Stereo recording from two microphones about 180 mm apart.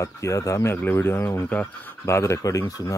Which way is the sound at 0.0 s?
15° left (ahead or behind).